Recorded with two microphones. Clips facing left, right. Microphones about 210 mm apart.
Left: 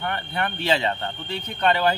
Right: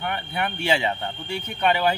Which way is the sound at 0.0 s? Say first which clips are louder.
Even; 10° right (ahead or behind).